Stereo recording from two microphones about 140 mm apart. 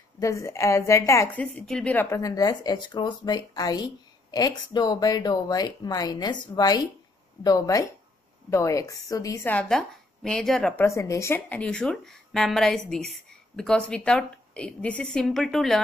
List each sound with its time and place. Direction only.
0.2 s speech: 20° left (ahead or behind)
1.3 s speech: 5° left (ahead or behind)
2.0 s speech: 20° left (ahead or behind); by 10.7 s 5° left (ahead or behind)
10.8 s speech: 20° left (ahead or behind); by 15.8 s centre (ahead or behind)